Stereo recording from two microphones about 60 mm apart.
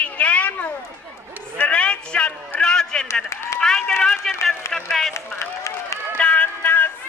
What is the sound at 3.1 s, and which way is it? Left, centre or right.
Speech, left.